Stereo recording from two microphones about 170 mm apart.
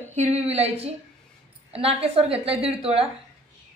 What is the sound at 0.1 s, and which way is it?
A woman's voice, 40° right (ahead or behind).